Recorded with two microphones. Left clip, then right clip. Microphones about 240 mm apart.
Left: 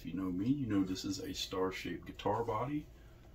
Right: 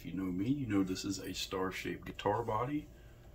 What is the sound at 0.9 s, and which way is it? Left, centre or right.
Speech, centre.